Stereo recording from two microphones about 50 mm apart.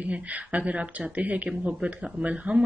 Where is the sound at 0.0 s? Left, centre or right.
Right.